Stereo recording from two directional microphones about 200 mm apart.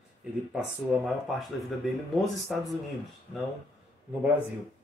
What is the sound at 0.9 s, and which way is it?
Speech, 5° right (ahead or behind).